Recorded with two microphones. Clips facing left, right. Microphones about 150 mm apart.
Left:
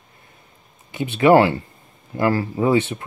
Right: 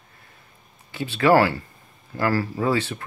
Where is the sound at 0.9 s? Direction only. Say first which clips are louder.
Left 4 dB; 20° left (ahead or behind).